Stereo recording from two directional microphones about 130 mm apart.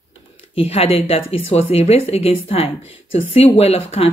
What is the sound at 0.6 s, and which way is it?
A woman's voice, 50° left (ahead or behind).